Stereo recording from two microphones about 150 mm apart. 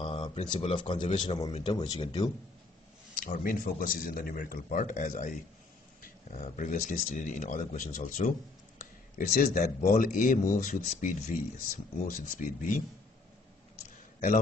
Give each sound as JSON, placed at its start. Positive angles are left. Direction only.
{"t": 0.0, "sound": "a sound", "side_deg": 35}
{"t": 0.5, "sound": "a man's voice", "side_deg": 35}
{"t": 3.2, "sound": "speech", "side_deg": 65}
{"t": 6.3, "sound": "speech", "side_deg": 60}